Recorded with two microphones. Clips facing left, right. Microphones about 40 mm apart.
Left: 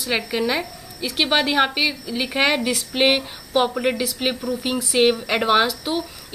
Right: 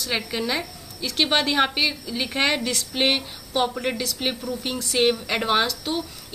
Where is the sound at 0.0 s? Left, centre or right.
Centre.